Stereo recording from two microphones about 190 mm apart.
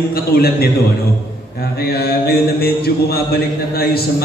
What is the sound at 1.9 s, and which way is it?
Speech, 55° left (ahead or behind).